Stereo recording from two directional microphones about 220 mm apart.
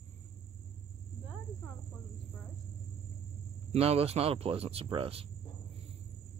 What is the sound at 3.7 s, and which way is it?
Speech, 25° right (ahead or behind).